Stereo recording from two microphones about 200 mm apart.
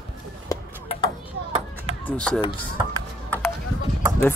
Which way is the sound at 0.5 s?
15° left (ahead or behind).